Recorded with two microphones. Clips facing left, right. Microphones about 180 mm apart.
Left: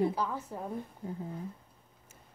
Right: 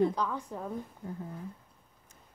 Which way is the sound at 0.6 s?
20° left (ahead or behind).